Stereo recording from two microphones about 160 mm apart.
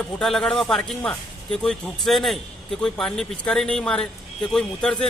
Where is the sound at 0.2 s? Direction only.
5° left (ahead or behind).